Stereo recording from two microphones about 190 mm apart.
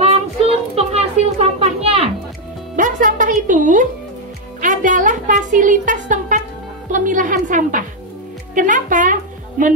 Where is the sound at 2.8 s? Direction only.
45° right (ahead or behind).